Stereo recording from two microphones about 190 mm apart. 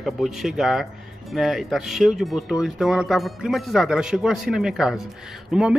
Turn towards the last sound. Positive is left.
turn(degrees=0)  # may be behind; listen again after turning